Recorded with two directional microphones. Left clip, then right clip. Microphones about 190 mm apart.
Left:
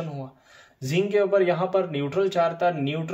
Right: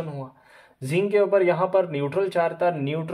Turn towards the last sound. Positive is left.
turn(degrees=-35)  # may be behind; listen again after turning